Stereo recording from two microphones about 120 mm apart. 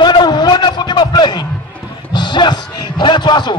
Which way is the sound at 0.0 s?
35° left (ahead or behind).